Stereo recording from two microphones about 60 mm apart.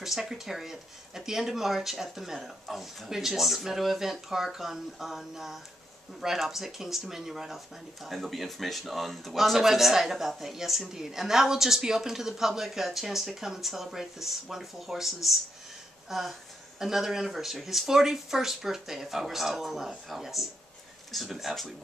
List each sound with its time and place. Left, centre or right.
0.0 s speech: centre